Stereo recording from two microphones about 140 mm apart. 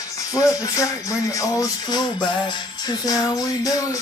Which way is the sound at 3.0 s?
25° left (ahead or behind).